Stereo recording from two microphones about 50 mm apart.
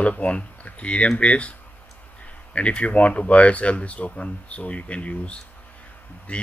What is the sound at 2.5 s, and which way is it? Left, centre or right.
Speech, left.